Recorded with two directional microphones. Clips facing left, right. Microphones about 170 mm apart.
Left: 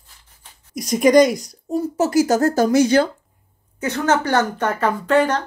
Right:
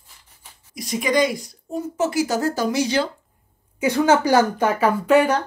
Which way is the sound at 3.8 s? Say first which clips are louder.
Right 2 dB; 10° right (ahead or behind).